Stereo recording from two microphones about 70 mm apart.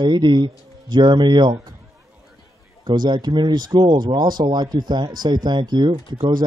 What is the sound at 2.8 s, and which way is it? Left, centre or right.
Speech, right.